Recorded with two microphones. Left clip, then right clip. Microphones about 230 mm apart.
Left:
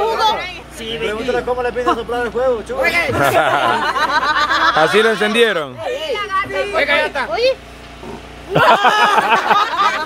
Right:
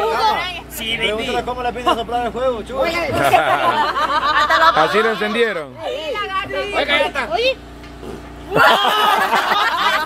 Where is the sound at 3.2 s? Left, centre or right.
Centre.